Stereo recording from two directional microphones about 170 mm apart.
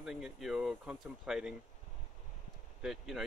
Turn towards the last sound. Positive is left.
turn(degrees=0)  # may be behind; listen again after turning